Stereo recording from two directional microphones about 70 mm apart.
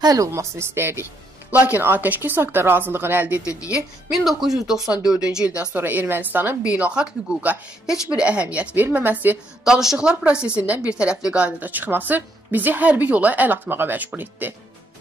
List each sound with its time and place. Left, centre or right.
0.0 s speech: right
0.3 s speech: right
1.8 s a woman's voice: right
4.1 s a woman's voice: centre; by 6.5 s right
6.6 s a woman's voice: centre
9.7 s a woman's voice: centre; by 14.5 s right